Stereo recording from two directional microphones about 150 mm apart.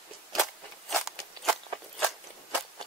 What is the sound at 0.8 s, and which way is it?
Crunch, centre (ahead or behind).